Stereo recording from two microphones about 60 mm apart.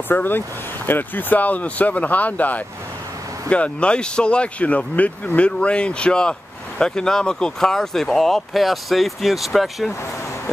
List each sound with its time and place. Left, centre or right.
0.1 s speech: left; by 9.8 s centre